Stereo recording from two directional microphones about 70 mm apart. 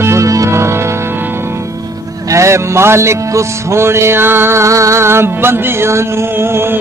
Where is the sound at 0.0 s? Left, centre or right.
Right.